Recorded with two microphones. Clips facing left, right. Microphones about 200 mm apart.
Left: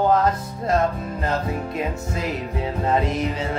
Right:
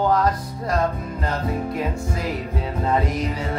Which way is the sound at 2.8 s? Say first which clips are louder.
Left 1 dB; 25° left (ahead or behind).